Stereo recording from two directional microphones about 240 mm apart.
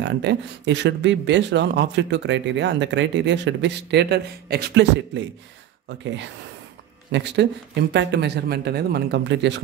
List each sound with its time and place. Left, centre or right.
0.0 s speech: right